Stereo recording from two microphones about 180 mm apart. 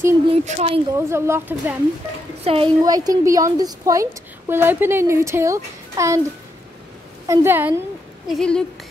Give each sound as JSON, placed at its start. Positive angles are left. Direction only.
{"t": 0.3, "sound": "speech", "side_deg": -35}
{"t": 0.9, "sound": "a woman's voice", "side_deg": -15}
{"t": 2.4, "sound": "a woman's voice", "side_deg": -30}
{"t": 7.2, "sound": "a woman's voice", "side_deg": -10}
{"t": 8.3, "sound": "speech", "side_deg": 5}